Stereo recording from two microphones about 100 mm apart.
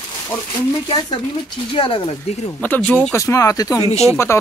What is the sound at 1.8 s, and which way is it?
Speech, 60° left (ahead or behind).